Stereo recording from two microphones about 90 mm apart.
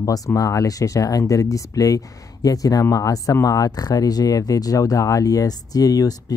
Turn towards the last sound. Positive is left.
turn(degrees=45)  # may be behind; listen again after turning